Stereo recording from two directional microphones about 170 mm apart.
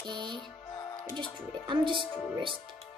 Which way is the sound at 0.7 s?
25° left (ahead or behind).